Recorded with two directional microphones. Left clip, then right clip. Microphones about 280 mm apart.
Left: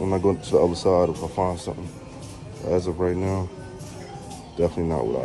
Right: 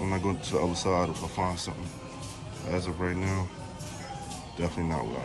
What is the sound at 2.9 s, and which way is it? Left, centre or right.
Speech, centre.